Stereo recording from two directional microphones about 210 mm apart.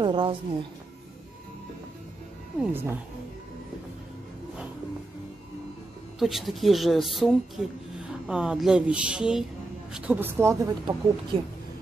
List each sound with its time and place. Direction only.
0.0 s a woman's voice: 25° right (ahead or behind)
2.6 s a woman's voice: 10° right (ahead or behind)
6.1 s a woman's voice: centre (ahead or behind)